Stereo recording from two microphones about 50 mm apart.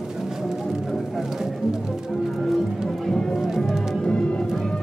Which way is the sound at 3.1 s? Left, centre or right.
Centre.